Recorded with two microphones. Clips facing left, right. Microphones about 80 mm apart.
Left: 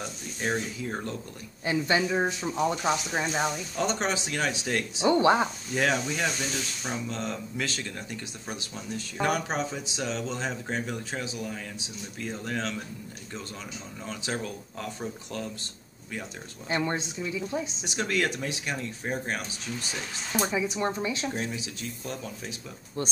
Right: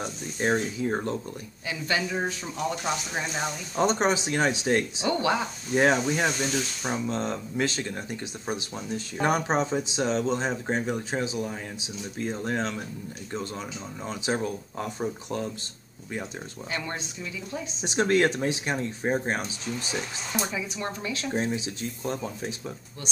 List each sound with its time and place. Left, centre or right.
0.0 s speech: right
1.7 s speech: left
3.7 s speech: right
5.0 s speech: left
5.8 s speech: right
14.0 s speech: right
16.7 s speech: left
17.8 s speech: right
20.3 s speech: left
21.3 s speech: right